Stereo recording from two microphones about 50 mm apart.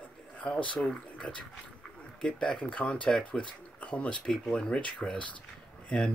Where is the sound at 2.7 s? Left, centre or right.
Left.